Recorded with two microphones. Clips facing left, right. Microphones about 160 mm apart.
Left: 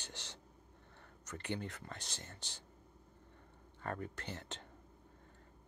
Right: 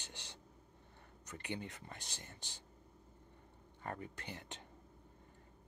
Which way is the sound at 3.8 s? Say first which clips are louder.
Left 3 dB; 15° right (ahead or behind).